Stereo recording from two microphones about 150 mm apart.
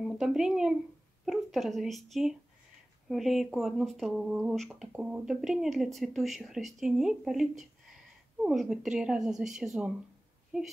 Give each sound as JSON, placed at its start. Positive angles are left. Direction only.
{"t": 0.0, "sound": "speech", "side_deg": 0}